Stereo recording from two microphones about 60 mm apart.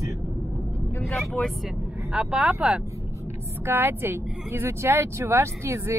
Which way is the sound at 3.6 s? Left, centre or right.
Right.